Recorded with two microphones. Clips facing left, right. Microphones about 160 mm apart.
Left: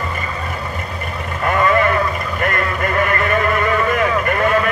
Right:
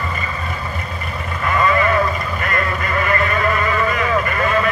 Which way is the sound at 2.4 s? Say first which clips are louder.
Left 5 dB; 50° left (ahead or behind).